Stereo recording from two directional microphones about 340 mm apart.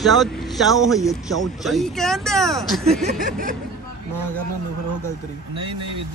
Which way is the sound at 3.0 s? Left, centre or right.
Right.